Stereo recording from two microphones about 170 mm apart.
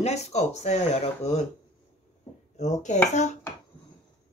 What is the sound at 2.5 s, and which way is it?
Speech, 45° left (ahead or behind).